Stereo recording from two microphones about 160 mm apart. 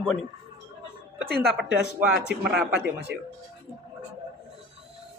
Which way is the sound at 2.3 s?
5° right (ahead or behind).